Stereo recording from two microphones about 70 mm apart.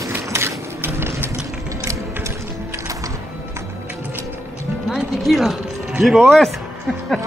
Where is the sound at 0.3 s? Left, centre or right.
Right.